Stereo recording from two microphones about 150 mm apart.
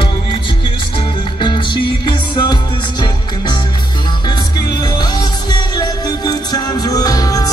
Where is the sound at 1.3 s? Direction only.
30° left (ahead or behind).